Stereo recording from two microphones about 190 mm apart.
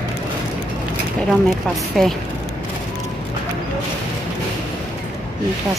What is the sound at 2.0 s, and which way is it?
Speech, centre (ahead or behind).